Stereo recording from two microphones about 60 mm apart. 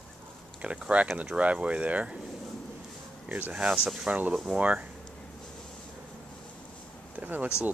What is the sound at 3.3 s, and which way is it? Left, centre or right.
Speech, right.